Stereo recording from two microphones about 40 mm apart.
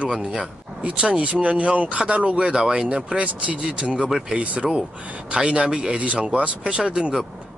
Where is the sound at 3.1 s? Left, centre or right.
Right.